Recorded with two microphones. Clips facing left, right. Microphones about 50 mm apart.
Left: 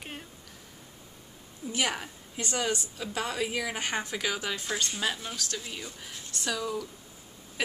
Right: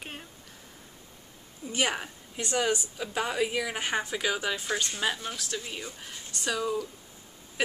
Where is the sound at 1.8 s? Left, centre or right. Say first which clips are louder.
Right 2 dB; centre.